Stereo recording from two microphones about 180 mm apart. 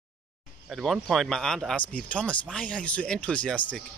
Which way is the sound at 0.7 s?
Centre (ahead or behind).